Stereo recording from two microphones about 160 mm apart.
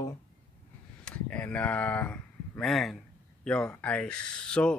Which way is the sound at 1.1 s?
10° left (ahead or behind).